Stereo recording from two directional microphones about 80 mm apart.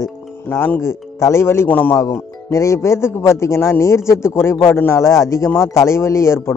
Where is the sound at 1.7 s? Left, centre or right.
Left.